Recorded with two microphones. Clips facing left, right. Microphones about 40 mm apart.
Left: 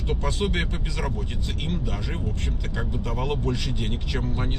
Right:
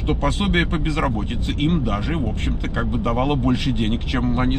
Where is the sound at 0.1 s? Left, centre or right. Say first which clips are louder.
Right 6 dB; right.